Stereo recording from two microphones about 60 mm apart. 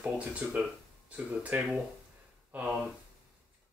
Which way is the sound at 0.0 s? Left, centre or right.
Right.